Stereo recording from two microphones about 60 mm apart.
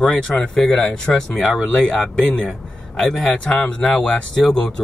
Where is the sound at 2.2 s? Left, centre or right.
Centre.